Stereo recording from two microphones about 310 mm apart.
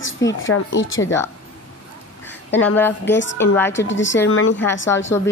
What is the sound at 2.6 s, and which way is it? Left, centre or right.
Speech, centre.